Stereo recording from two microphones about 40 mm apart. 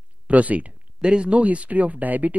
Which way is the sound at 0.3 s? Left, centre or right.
Right.